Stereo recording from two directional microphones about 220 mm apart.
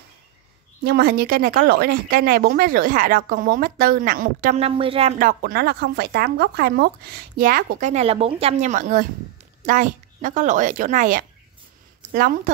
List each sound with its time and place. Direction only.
0.8 s speech: 45° right (ahead or behind); by 5.1 s 25° right (ahead or behind)
5.2 s speech: 45° right (ahead or behind)